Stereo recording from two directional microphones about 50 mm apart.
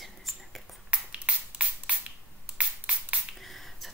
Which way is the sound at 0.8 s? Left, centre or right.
Right.